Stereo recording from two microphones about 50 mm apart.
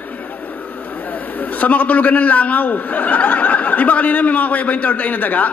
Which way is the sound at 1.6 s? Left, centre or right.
Left.